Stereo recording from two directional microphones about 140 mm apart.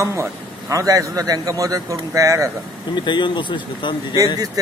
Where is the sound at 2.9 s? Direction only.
35° left (ahead or behind).